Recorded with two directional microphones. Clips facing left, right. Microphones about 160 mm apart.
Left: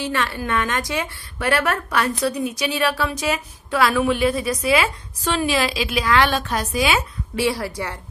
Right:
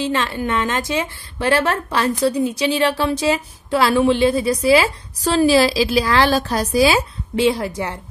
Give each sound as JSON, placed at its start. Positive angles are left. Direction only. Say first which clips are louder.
{"t": 0.0, "sound": "a woman's voice", "louder": "right 3 dB", "side_deg": -20}
{"t": 7.3, "sound": "a woman's voice", "louder": "right 4 dB", "side_deg": -20}